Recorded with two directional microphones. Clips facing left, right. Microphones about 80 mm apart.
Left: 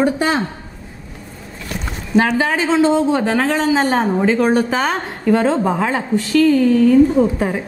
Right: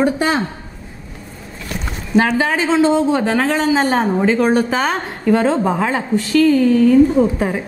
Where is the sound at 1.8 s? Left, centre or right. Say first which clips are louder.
Even; right.